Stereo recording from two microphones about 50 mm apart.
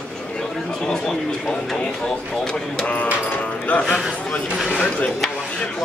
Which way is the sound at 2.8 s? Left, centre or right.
Left.